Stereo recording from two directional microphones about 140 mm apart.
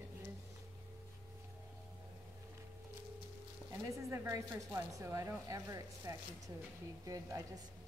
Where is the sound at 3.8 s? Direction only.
20° right (ahead or behind).